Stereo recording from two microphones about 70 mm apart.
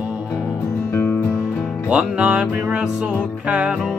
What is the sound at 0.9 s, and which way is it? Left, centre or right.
Music, left.